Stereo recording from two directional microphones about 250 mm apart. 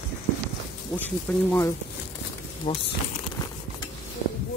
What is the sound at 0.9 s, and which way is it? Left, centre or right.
Speech, centre.